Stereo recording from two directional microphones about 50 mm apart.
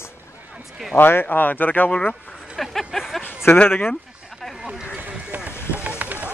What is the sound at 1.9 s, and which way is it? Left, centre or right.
Speech, left.